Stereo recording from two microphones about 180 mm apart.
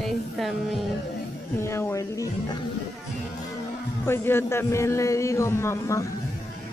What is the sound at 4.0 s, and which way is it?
A man's voice, 15° left (ahead or behind).